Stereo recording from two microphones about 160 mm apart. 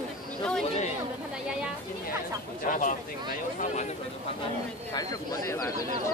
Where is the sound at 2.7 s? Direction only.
55° left (ahead or behind).